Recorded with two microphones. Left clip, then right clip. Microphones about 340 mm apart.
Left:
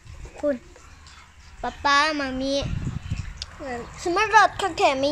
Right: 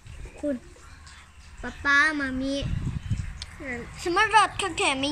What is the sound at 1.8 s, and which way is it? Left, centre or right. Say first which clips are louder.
Child singing: left 1 dB; centre.